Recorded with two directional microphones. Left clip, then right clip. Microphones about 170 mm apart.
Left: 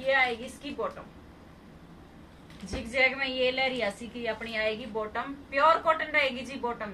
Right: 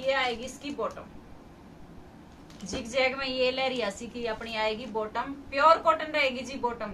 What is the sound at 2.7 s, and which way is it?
A woman's voice, 15° right (ahead or behind).